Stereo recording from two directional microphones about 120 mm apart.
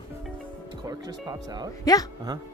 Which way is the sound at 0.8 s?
30° right (ahead or behind).